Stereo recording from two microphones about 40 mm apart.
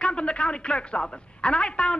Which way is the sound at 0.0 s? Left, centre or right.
Left.